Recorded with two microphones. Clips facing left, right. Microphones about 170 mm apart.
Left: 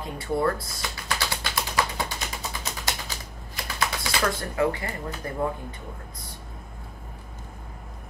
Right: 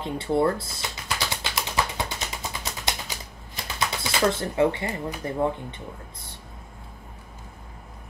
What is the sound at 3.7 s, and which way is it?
Speech, 25° right (ahead or behind).